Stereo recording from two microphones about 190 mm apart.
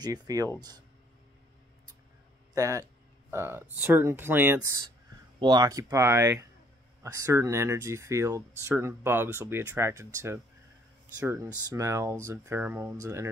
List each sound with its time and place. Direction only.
0.0 s speech: 20° right (ahead or behind)
2.5 s speech: 15° right (ahead or behind)